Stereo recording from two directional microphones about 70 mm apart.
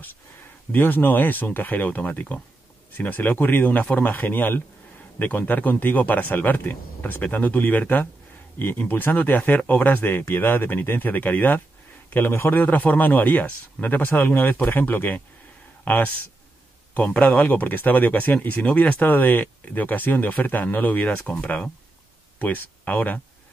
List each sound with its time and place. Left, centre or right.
0.7 s speech: left
22.4 s speech: left